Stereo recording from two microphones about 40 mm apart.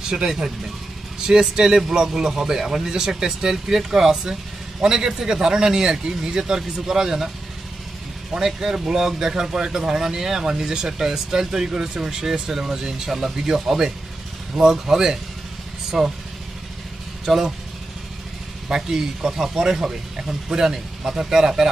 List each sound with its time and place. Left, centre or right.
0.1 s speech: centre
8.4 s speech: centre
17.2 s speech: centre
18.7 s speech: centre